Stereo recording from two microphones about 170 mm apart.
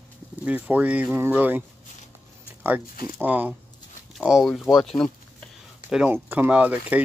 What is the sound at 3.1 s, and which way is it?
Speech, 10° right (ahead or behind).